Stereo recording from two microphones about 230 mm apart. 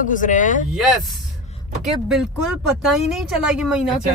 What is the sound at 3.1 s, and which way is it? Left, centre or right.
Speech, centre.